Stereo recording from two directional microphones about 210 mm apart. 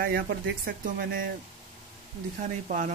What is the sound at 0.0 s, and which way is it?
Speech, 50° right (ahead or behind).